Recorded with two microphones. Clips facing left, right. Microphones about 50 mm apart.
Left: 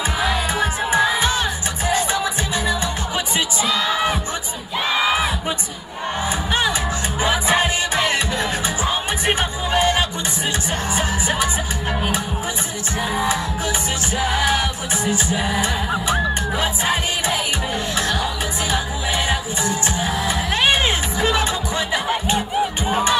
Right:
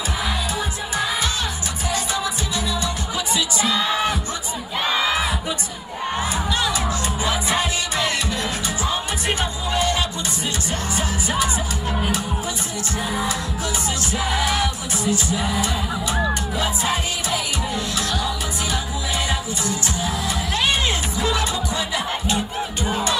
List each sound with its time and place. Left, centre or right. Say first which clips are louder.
0.2 s music: left 6 dB; left
4.8 s crowd: left 2 dB; centre
7.2 s music: left 5 dB; left
13.1 s music: left 4 dB; left
15.0 s music: even; left
19.2 s music: left 3 dB; left